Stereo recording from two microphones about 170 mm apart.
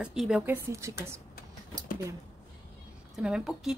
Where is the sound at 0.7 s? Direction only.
15° right (ahead or behind).